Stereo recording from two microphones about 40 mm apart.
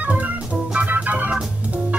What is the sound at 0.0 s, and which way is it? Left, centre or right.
Organ, right.